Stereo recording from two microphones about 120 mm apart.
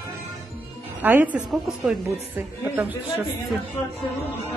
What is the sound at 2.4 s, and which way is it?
Speech, 15° right (ahead or behind).